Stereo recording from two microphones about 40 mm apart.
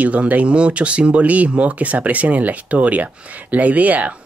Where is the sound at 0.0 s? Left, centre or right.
Right.